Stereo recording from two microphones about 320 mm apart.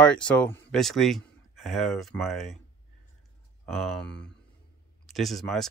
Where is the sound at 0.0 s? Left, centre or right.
Centre.